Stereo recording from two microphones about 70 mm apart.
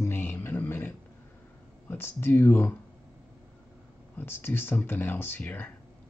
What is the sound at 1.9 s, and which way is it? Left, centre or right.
Speech, left.